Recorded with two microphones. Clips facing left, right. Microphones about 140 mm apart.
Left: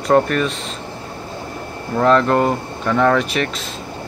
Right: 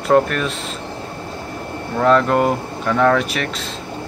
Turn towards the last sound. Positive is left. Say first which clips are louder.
# even
turn(degrees=0)  # may be behind; listen again after turning